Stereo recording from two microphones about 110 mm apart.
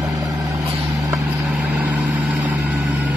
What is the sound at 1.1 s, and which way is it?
Vehicle, 10° right (ahead or behind).